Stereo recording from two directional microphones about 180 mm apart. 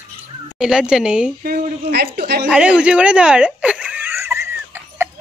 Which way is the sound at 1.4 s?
55° right (ahead or behind).